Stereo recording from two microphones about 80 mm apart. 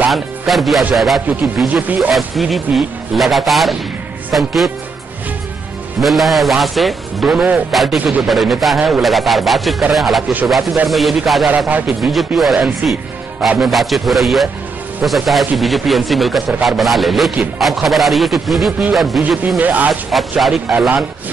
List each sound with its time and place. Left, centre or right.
0.1 s a man's voice: centre
1.7 s a man's voice: right
2.1 s a man's voice: centre
5.9 s a man's voice: centre
11.4 s a man's voice: right
12.0 s a man's voice: centre
19.6 s a man's voice: right
19.9 s a man's voice: centre